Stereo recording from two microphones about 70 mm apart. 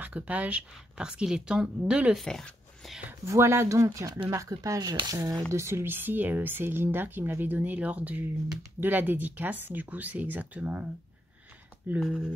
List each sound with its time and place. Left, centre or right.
0.0 s speech: right
2.1 s speech: centre
3.3 s speech: right
4.7 s speech: right
5.1 s speech: right
12.0 s speech: centre